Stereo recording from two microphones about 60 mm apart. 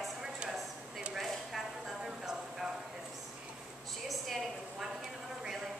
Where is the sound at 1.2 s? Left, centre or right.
Centre.